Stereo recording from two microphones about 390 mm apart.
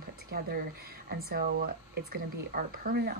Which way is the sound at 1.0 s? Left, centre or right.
Right.